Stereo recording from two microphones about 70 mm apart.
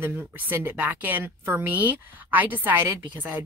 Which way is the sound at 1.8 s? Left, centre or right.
Right.